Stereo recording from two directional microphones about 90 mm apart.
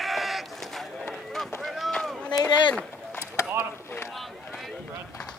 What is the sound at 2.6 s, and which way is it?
Run, 15° left (ahead or behind).